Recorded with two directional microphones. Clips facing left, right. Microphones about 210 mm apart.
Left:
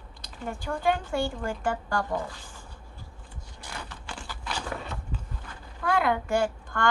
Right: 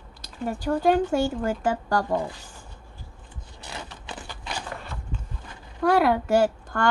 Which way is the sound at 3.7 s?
20° right (ahead or behind).